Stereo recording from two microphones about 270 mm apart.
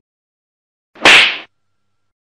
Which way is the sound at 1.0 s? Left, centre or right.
Centre.